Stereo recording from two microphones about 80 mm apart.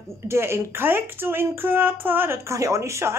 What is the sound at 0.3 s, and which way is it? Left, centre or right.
Speech, right.